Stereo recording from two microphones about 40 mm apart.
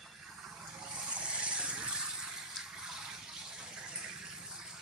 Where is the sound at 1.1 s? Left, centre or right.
Right.